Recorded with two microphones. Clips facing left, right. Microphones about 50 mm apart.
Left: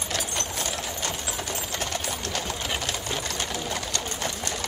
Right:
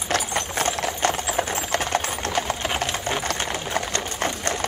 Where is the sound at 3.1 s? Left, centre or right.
Right.